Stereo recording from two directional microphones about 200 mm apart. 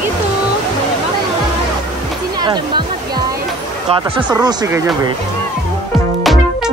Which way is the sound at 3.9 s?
25° right (ahead or behind).